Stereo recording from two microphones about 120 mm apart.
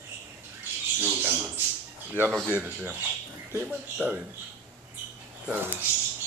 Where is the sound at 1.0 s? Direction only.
15° right (ahead or behind).